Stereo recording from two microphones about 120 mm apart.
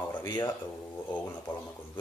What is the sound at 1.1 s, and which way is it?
Speech, 15° left (ahead or behind).